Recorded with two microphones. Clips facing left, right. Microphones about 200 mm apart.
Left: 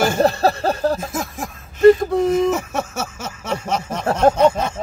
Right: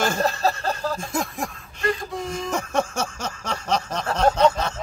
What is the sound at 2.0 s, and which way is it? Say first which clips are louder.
Gasp: left 12 dB; 60° left (ahead or behind).